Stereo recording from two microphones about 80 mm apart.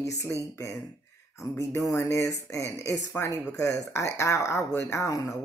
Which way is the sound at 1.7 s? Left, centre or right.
Left.